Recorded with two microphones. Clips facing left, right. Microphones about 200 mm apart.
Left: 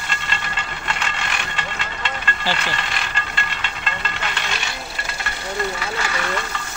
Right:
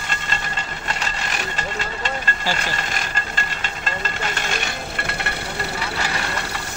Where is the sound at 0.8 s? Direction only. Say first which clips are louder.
Left 1 dB; 40° right (ahead or behind).